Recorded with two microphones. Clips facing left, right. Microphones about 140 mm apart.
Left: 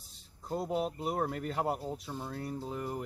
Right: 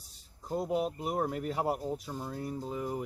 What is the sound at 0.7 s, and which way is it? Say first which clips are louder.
Speech: right 1 dB; 10° right (ahead or behind).